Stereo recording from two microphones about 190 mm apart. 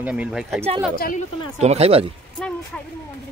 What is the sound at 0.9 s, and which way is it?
Speech, 50° left (ahead or behind).